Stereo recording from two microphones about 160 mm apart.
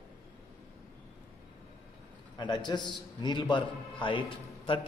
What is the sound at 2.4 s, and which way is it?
A man's voice, 30° left (ahead or behind).